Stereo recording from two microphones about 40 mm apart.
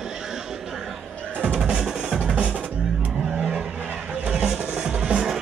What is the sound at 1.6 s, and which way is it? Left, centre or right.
Drum, centre.